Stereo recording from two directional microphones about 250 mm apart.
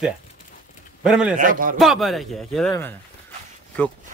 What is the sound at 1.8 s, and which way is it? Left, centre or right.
Speech, centre.